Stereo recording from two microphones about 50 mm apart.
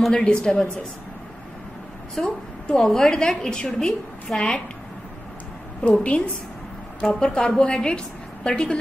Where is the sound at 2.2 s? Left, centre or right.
Centre.